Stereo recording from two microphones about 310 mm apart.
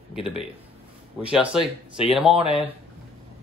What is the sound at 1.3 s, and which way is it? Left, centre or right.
Speech, centre.